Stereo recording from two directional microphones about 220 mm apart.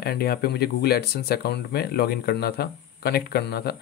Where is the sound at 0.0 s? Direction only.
45° left (ahead or behind).